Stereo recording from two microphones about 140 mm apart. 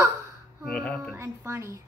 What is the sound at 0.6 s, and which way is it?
Speech, 5° left (ahead or behind).